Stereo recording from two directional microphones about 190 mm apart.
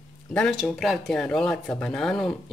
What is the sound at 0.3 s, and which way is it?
Speech, 5° left (ahead or behind).